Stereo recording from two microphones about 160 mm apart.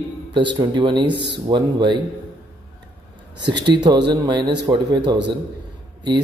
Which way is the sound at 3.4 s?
30° right (ahead or behind).